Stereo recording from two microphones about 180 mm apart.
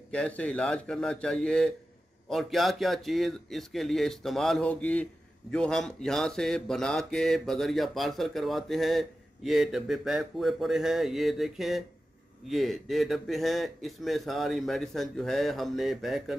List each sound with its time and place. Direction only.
0.1 s speech: 5° left (ahead or behind)